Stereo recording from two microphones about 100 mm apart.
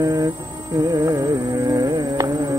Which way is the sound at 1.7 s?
40° right (ahead or behind).